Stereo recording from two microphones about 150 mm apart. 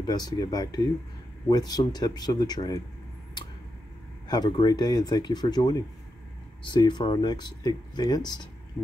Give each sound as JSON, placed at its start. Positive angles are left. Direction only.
{"t": 0.0, "sound": "speech", "side_deg": 25}
{"t": 4.3, "sound": "speech", "side_deg": 30}